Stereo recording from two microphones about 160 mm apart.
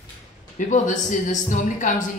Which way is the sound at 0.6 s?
55° left (ahead or behind).